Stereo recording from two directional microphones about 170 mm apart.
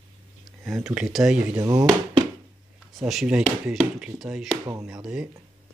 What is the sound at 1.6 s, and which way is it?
Speech, 20° right (ahead or behind).